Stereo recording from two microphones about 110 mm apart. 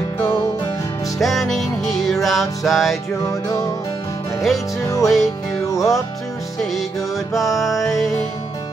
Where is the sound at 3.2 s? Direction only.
30° left (ahead or behind).